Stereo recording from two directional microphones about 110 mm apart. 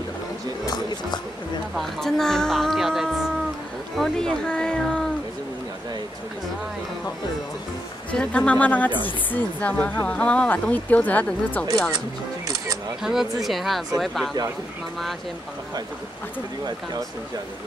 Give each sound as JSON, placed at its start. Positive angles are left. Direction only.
{"t": 0.7, "sound": "music", "side_deg": 40}
{"t": 1.8, "sound": "speech", "side_deg": 5}
{"t": 8.1, "sound": "speech", "side_deg": 10}
{"t": 13.0, "sound": "speech", "side_deg": -5}